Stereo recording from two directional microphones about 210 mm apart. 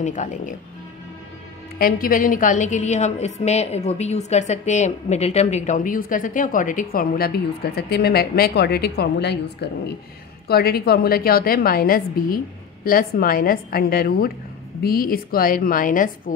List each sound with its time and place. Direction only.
0.0 s a woman's voice: 35° left (ahead or behind)
1.8 s a woman's voice: 45° left (ahead or behind)